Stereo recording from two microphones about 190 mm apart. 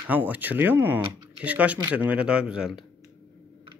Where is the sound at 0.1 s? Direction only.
10° right (ahead or behind).